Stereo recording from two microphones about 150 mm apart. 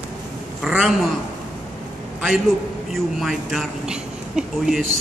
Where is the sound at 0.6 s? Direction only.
5° right (ahead or behind).